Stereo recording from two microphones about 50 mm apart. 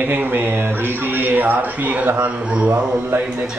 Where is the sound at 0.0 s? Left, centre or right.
Right.